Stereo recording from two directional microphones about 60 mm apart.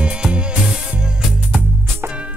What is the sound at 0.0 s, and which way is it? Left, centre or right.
Music, centre.